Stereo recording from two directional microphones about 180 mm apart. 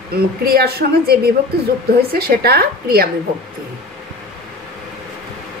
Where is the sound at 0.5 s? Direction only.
60° right (ahead or behind).